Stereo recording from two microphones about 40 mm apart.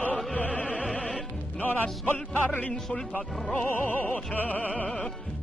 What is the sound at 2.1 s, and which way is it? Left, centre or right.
Music, left.